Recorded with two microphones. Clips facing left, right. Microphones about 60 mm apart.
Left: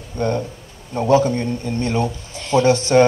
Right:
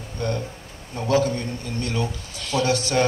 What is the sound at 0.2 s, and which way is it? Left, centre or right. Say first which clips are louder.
A man's voice: left 6 dB; left.